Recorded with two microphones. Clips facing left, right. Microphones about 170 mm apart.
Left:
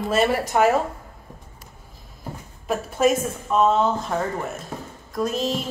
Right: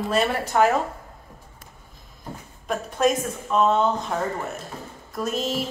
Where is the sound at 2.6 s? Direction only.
5° left (ahead or behind).